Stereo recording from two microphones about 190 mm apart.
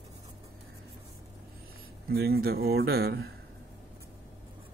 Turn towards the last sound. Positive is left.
turn(degrees=-60)  # may be behind; listen again after turning